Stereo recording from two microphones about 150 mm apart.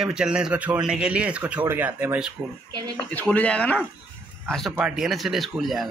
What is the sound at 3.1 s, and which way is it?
Speech, 10° left (ahead or behind).